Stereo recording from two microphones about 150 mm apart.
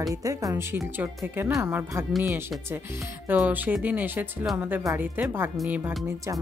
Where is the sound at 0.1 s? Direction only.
20° right (ahead or behind).